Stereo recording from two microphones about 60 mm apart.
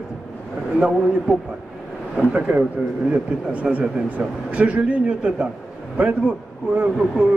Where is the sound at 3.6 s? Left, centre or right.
Centre.